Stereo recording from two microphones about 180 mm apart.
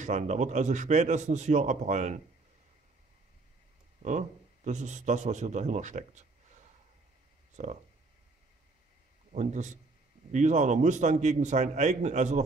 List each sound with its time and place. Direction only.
0.0 s speech: 40° right (ahead or behind)
4.0 s speech: 45° right (ahead or behind)
7.5 s speech: 40° right (ahead or behind)
9.3 s speech: 40° right (ahead or behind)